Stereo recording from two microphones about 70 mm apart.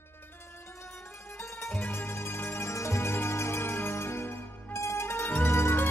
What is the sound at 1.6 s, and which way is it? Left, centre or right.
Music, left.